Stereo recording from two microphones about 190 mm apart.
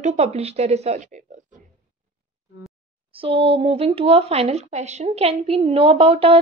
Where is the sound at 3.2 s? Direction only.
30° right (ahead or behind).